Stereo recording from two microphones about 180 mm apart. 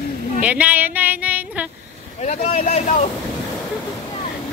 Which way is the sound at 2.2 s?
35° left (ahead or behind).